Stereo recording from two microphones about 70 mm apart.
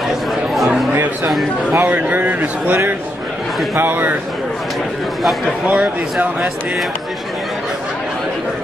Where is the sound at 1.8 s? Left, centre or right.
Right.